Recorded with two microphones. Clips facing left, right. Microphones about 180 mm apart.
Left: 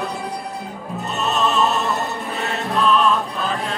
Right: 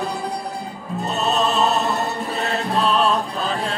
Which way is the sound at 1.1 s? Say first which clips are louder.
Even; 35° right (ahead or behind).